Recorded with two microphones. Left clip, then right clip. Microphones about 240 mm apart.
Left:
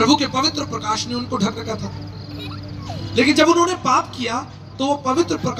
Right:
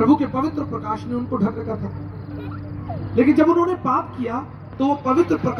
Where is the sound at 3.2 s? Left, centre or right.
Centre.